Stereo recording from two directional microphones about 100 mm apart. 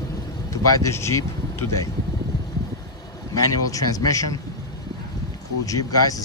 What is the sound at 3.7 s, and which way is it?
Speech, 35° left (ahead or behind).